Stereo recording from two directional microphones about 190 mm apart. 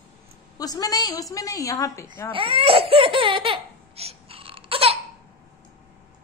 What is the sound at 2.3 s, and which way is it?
Crying, 30° right (ahead or behind).